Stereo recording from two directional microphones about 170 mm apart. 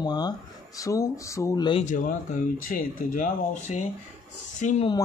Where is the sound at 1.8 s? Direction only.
50° left (ahead or behind).